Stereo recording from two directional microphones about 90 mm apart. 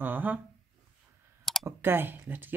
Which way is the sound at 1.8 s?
25° right (ahead or behind).